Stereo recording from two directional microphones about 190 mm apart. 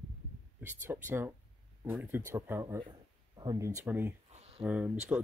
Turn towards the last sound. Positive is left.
turn(degrees=-5)  # may be behind; listen again after turning